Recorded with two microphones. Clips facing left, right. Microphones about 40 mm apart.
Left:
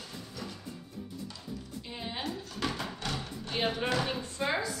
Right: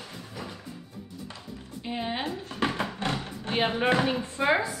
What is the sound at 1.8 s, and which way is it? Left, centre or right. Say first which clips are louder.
Speech: right 7 dB; right.